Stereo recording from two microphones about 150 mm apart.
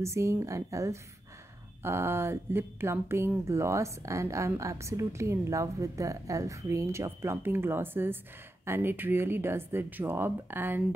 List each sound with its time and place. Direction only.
0.0 s speech: 20° right (ahead or behind)